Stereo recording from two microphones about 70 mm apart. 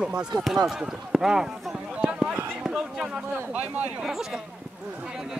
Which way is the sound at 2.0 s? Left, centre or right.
Centre.